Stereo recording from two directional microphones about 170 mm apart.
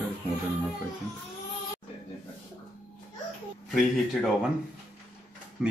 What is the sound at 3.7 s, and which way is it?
Speech, centre (ahead or behind).